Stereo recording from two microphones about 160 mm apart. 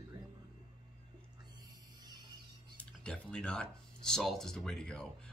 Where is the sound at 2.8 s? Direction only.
5° left (ahead or behind).